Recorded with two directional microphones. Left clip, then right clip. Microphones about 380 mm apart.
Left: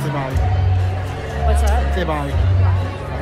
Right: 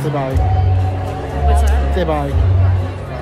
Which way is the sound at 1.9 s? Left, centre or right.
Centre.